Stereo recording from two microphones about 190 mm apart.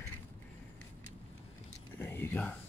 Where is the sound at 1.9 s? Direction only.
10° left (ahead or behind).